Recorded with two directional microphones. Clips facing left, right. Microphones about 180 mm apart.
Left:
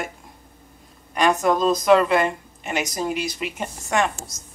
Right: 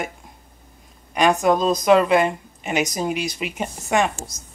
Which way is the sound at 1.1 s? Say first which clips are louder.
Right 2 dB; 10° right (ahead or behind).